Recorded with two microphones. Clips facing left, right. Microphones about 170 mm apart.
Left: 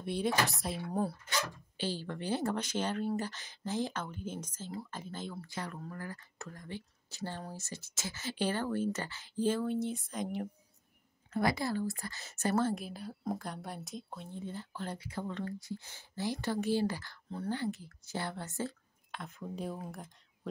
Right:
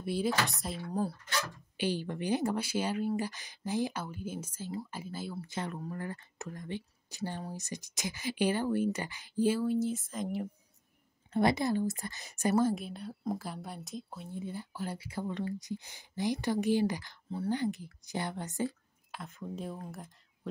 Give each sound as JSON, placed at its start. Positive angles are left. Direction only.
{"t": 0.0, "sound": "speech", "side_deg": -5}
{"t": 1.8, "sound": "speech", "side_deg": -15}
{"t": 5.5, "sound": "speech", "side_deg": -20}
{"t": 11.3, "sound": "a woman's voice", "side_deg": -25}
{"t": 12.7, "sound": "speech", "side_deg": 0}
{"t": 19.1, "sound": "speech", "side_deg": 0}